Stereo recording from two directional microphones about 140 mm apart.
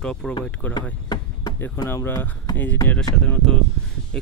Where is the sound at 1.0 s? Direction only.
30° left (ahead or behind).